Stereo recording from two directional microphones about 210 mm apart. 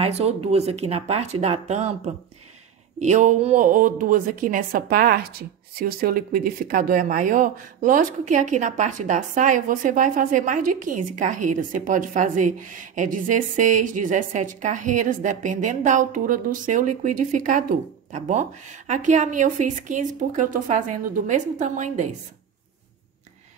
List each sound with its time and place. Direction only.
0.0 s speech: 30° right (ahead or behind)
3.0 s speech: 35° right (ahead or behind)